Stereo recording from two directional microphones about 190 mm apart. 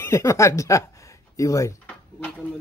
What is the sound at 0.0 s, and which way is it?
Speech, 15° left (ahead or behind).